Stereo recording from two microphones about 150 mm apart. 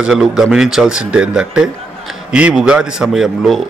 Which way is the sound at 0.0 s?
5° right (ahead or behind).